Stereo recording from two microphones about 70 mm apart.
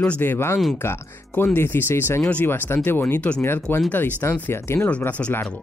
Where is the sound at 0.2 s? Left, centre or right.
Left.